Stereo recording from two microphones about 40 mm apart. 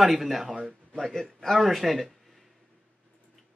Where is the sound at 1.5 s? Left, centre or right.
Centre.